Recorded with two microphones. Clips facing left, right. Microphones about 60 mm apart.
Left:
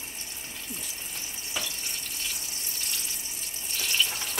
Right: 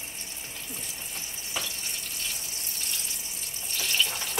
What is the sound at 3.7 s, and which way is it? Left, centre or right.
Water, centre.